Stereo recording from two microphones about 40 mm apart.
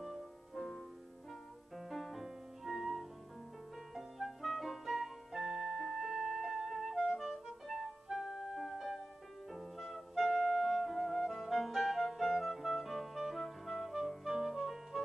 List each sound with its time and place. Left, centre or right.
0.0 s music: centre
1.8 s music: centre